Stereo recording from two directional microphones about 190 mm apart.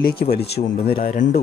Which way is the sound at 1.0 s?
45° left (ahead or behind).